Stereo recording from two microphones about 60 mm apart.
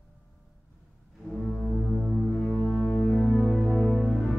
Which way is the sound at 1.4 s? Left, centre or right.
Centre.